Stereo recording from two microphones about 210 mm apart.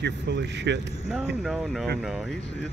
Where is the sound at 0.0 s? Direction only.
55° right (ahead or behind).